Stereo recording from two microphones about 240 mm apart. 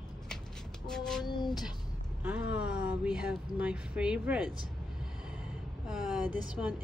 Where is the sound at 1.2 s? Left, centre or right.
Centre.